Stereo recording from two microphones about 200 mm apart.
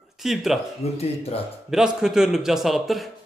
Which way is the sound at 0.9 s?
30° left (ahead or behind).